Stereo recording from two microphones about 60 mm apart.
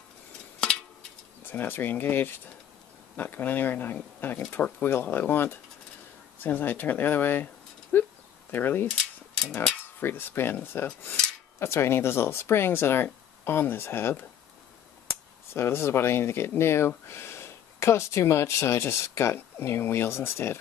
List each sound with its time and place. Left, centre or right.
1.4 s speech: left
4.5 s speech: left
4.8 s speech: left
9.4 s speech: centre
9.7 s speech: left
15.5 s speech: left